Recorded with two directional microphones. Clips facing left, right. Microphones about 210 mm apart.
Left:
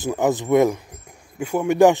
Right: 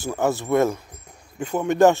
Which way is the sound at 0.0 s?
15° left (ahead or behind).